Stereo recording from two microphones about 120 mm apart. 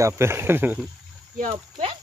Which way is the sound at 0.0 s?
20° right (ahead or behind).